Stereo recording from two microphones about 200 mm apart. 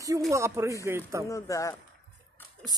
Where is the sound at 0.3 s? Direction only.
15° right (ahead or behind).